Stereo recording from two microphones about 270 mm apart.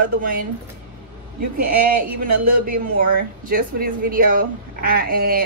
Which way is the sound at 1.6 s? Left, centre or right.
Right.